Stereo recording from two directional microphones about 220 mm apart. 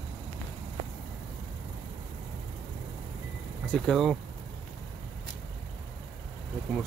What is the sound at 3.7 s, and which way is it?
Speech, centre (ahead or behind).